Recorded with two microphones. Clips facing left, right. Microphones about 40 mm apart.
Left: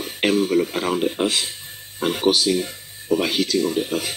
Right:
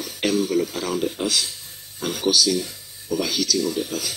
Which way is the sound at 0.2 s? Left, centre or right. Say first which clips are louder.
Left 3 dB; left.